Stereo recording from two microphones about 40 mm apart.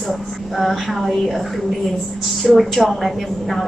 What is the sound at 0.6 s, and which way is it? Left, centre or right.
Speech, centre.